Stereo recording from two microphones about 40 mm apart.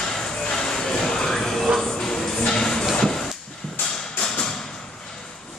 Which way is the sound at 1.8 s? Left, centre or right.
Centre.